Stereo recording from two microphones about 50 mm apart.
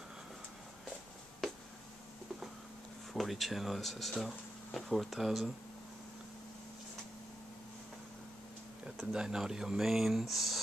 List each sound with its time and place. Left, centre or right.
3.1 s speech: centre
9.1 s speech: centre